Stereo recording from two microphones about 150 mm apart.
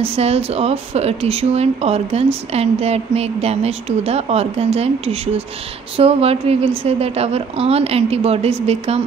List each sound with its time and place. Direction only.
0.0 s a woman's voice: 40° right (ahead or behind)